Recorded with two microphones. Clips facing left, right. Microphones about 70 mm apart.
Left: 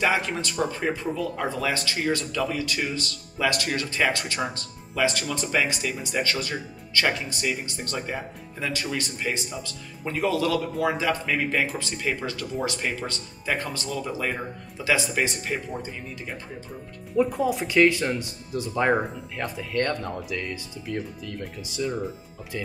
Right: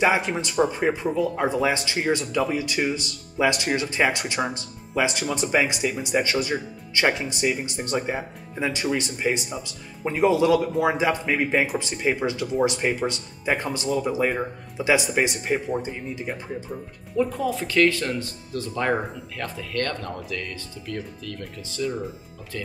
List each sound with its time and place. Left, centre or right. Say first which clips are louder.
0.0 s speech: right 3 dB; right
17.2 s speech: left 1 dB; centre